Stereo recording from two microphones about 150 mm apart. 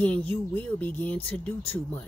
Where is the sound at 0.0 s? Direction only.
10° left (ahead or behind).